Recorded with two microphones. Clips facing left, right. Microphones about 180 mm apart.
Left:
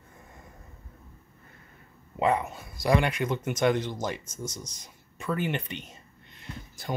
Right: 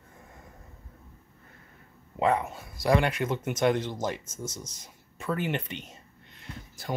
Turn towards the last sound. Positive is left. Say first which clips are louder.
# left 1 dB
turn(degrees=-5)  # may be behind; listen again after turning